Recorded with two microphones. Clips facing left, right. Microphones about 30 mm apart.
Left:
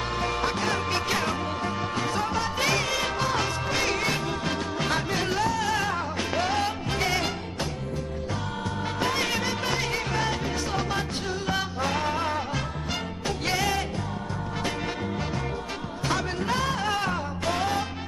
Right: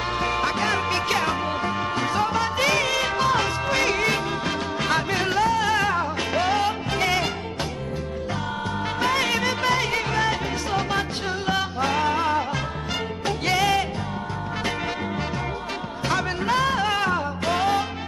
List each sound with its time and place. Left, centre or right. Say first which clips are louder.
0.2 s music: right 3 dB; centre
5.9 s music: right 4 dB; centre
9.0 s music: right 4 dB; right
10.1 s music: right 4 dB; centre
11.8 s music: right 6 dB; right
13.6 s music: right 7 dB; right
16.4 s music: right 6 dB; right